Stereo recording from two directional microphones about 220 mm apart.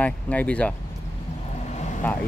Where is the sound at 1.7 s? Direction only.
30° left (ahead or behind).